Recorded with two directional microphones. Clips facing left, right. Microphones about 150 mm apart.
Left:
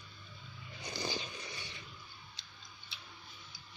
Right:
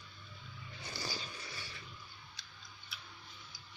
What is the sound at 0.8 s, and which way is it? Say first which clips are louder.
Cat: left 4 dB; 20° left (ahead or behind).